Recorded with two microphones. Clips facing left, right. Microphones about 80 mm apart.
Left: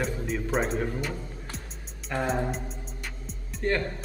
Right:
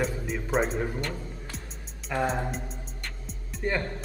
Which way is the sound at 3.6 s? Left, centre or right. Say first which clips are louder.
Left 2 dB; centre.